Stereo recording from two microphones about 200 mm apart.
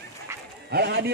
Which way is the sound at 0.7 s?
55° right (ahead or behind).